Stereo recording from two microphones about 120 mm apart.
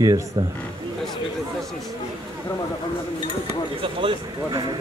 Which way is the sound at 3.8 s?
45° right (ahead or behind).